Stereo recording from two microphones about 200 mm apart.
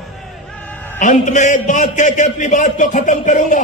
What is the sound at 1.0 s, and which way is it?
Speech, 40° left (ahead or behind).